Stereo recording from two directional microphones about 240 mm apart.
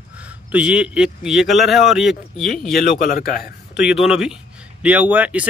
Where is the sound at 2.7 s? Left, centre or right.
Left.